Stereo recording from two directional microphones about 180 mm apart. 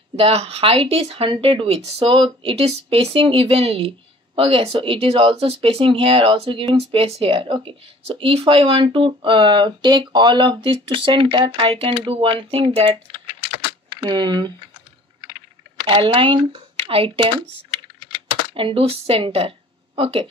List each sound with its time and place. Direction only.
0.1 s speech: 35° right (ahead or behind)
14.0 s speech: 25° right (ahead or behind)
15.9 s speech: 30° right (ahead or behind)
18.5 s speech: 30° right (ahead or behind)